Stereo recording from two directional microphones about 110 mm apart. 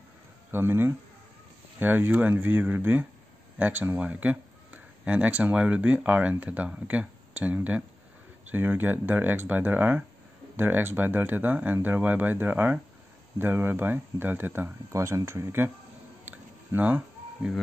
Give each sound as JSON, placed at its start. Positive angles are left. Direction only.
{"t": 0.5, "sound": "speech", "side_deg": -20}
{"t": 16.3, "sound": "chicken", "side_deg": -15}